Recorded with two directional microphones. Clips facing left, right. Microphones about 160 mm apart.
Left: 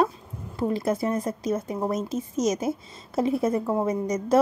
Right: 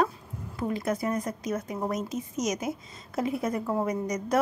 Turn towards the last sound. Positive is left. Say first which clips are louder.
# left 5 dB
turn(degrees=25)  # may be behind; listen again after turning